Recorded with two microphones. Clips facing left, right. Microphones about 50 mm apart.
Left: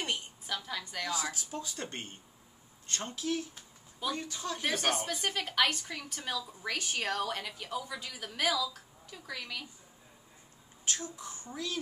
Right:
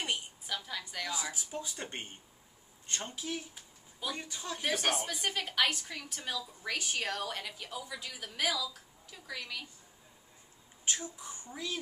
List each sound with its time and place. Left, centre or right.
0.0 s a sound: centre
1.3 s a woman's voice: centre
10.9 s speech: centre